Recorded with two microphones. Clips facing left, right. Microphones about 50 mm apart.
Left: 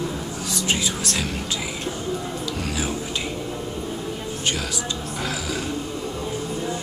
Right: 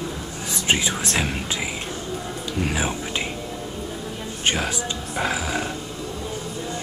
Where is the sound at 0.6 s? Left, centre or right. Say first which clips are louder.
Right 3 dB; right.